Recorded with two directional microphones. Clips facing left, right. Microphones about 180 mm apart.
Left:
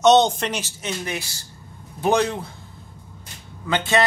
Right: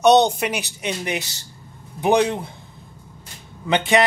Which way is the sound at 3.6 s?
15° right (ahead or behind).